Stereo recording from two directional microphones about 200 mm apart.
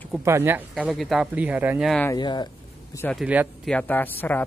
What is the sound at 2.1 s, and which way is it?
Speech, 20° left (ahead or behind).